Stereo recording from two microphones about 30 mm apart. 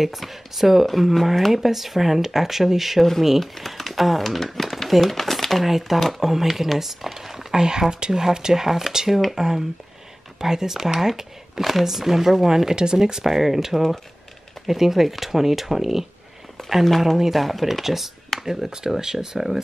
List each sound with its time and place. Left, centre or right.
0.0 s speech: centre
0.8 s speech: centre
5.6 s speech: centre
7.5 s speech: right
13.2 s speech: centre
16.7 s speech: centre